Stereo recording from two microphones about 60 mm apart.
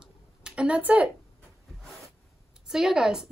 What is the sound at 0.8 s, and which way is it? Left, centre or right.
Speech, right.